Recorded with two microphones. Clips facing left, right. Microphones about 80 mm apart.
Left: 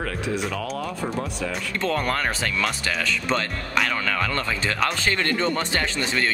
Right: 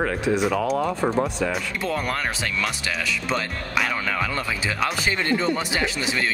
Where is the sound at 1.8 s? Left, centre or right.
Centre.